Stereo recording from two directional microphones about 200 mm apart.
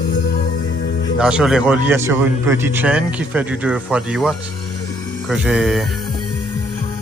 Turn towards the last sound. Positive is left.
turn(degrees=0)  # may be behind; listen again after turning